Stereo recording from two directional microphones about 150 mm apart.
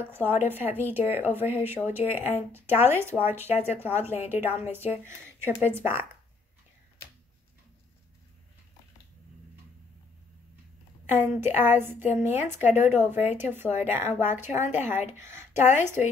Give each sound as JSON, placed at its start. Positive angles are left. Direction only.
{"t": 0.0, "sound": "a woman's voice", "side_deg": -15}
{"t": 11.1, "sound": "a woman's voice", "side_deg": -15}